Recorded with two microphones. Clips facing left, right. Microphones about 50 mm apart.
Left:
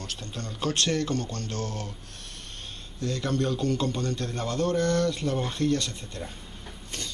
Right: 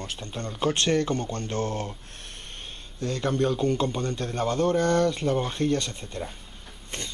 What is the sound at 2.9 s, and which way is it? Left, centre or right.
A man's voice, right.